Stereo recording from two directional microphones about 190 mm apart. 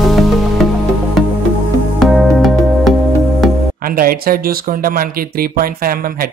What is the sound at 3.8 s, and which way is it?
Speech, 50° right (ahead or behind).